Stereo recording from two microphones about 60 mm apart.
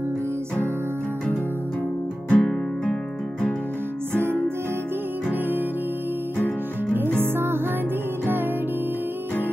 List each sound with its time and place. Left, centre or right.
2.2 s music: centre
4.1 s music: right
7.3 s music: right